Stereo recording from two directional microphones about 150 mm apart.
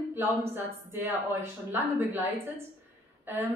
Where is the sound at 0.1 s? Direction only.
15° right (ahead or behind).